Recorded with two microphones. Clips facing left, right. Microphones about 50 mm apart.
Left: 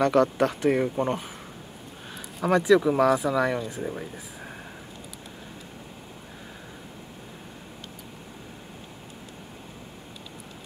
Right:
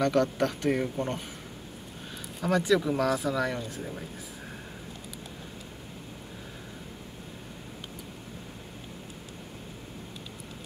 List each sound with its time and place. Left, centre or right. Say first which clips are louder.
0.0 s speech: left 4 dB; centre
2.4 s speech: left 5 dB; centre
3.8 s speech: left 6 dB; centre